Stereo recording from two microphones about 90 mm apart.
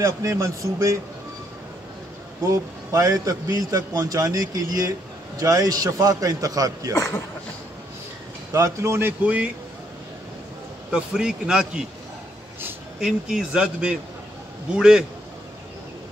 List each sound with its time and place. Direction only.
0.0 s a man's voice: 35° right (ahead or behind)
2.4 s a man's voice: 35° right (ahead or behind)
6.9 s a man's voice: 30° left (ahead or behind)
8.5 s a man's voice: 35° right (ahead or behind)
9.2 s speech: 15° right (ahead or behind)
10.9 s speech: 10° right (ahead or behind)
13.0 s speech: 10° right (ahead or behind)